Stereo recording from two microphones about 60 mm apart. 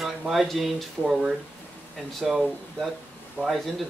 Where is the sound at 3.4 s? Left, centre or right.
Centre.